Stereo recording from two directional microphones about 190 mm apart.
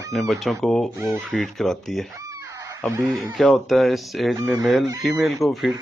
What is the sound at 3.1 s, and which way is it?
Speech, centre (ahead or behind).